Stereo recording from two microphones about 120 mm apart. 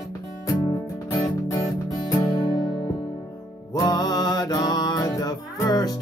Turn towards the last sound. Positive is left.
turn(degrees=30)  # may be behind; listen again after turning